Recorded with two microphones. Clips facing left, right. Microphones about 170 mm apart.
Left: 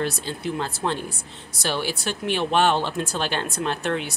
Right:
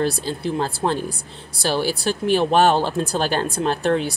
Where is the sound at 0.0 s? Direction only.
35° right (ahead or behind).